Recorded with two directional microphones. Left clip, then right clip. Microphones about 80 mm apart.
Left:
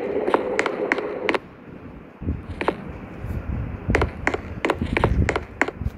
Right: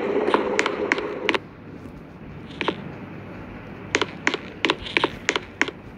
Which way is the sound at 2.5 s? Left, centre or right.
Left.